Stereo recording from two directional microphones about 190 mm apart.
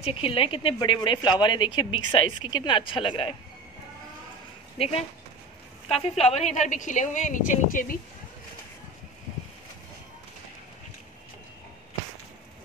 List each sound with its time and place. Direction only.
0.0 s speech: 30° left (ahead or behind)
4.7 s a woman's voice: 35° left (ahead or behind)